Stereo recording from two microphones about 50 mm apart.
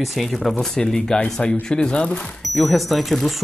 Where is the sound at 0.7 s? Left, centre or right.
Centre.